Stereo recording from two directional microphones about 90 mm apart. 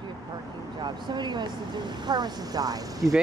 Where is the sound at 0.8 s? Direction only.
55° right (ahead or behind).